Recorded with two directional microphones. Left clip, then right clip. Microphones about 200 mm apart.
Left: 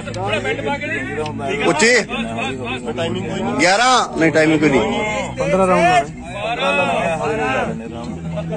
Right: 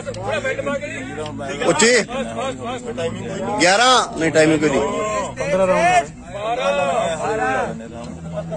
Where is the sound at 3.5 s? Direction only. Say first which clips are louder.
Even; 5° right (ahead or behind).